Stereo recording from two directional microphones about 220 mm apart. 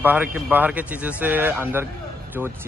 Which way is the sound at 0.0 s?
10° right (ahead or behind).